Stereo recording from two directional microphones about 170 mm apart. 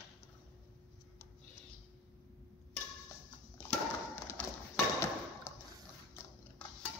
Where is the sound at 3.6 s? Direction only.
15° left (ahead or behind).